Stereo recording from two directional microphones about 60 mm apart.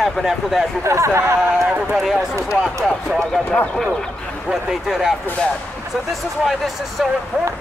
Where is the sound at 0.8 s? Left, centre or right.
Right.